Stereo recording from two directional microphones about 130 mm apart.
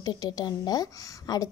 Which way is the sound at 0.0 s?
30° left (ahead or behind).